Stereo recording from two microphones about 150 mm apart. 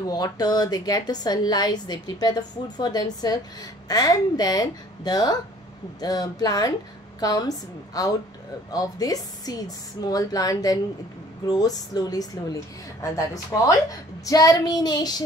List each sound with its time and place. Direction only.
0.1 s a woman's voice: 25° left (ahead or behind)